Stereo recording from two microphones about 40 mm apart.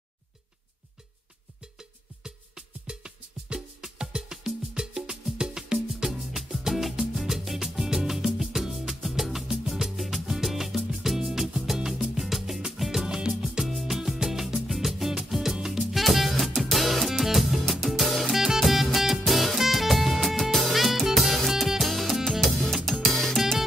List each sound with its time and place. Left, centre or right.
1.8 s music: centre
13.0 s music: centre